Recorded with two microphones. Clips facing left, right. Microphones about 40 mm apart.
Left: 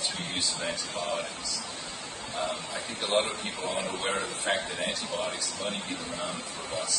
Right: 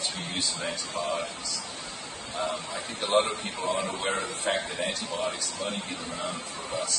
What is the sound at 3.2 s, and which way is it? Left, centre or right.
Speech, right.